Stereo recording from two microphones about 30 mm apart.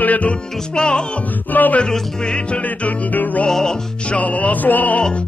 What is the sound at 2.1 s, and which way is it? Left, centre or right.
Music, left.